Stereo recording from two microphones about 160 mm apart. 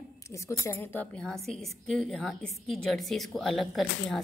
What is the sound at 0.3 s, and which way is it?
A woman's voice, 15° left (ahead or behind).